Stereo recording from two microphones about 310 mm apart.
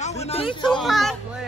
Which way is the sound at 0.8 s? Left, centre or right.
Centre.